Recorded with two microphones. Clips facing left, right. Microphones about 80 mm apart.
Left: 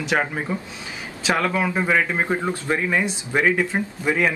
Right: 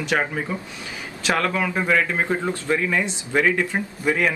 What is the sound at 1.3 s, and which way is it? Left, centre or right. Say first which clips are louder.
Speech: left 1 dB; centre.